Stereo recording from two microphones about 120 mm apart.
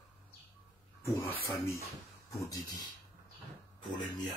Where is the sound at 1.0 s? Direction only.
20° left (ahead or behind).